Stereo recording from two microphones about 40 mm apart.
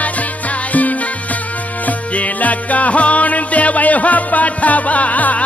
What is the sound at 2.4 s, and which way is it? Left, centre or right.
Music, left.